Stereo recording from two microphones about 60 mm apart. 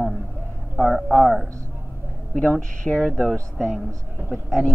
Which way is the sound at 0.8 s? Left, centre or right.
Centre.